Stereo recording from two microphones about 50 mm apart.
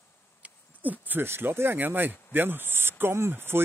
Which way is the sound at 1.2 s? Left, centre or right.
Right.